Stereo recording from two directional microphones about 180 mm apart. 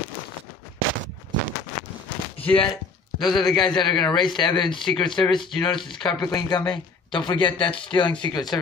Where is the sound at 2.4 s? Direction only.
Centre (ahead or behind).